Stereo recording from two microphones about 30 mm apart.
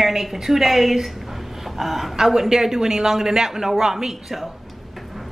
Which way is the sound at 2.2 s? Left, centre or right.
Centre.